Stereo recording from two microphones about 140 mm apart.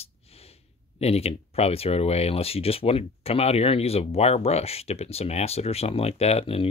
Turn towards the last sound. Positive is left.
turn(degrees=45)  # may be behind; listen again after turning